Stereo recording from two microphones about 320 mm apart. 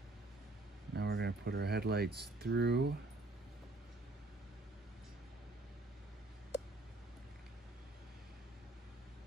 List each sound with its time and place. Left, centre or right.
0.9 s speech: right